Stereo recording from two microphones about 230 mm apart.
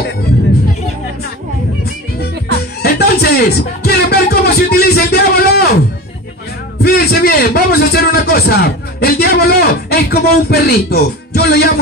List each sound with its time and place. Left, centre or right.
2.8 s music: left
6.8 s a man's voice: left